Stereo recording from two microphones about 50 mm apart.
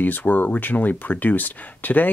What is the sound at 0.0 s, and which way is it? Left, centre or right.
Speech, left.